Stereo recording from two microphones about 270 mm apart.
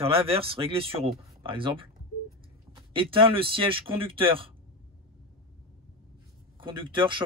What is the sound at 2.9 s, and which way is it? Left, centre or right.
A man's voice, centre.